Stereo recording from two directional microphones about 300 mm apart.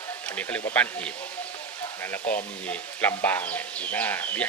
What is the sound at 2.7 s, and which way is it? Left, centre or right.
Speech, centre.